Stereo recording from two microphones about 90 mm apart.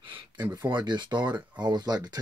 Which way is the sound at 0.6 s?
55° right (ahead or behind).